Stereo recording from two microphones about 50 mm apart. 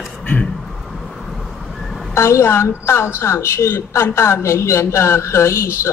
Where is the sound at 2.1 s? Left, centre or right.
Left.